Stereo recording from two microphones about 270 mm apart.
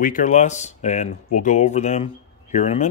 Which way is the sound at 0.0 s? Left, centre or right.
Left.